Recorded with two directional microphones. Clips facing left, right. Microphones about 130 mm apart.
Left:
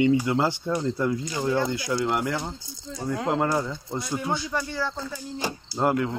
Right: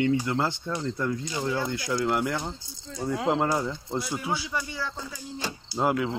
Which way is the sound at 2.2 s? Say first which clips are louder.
Left 1 dB; centre (ahead or behind).